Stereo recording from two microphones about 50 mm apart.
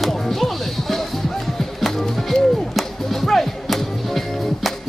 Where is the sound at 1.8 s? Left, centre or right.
Centre.